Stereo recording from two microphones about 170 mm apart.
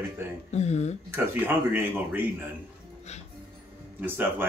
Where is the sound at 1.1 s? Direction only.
10° right (ahead or behind).